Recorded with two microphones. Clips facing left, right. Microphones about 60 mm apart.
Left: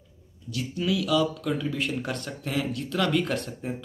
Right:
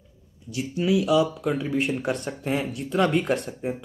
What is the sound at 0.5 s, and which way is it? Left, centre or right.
Mantra, right.